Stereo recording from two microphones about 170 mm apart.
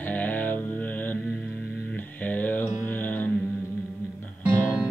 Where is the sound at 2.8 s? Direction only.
10° left (ahead or behind).